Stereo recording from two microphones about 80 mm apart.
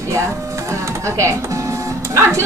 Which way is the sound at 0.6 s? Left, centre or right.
Right.